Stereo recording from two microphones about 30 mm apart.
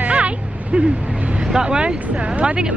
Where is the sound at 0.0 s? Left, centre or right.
Right.